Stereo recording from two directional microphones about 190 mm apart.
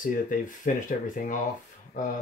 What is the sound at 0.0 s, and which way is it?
Speech, 45° left (ahead or behind).